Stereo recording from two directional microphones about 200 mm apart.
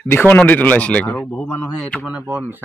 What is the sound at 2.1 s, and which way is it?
Speech, 10° right (ahead or behind).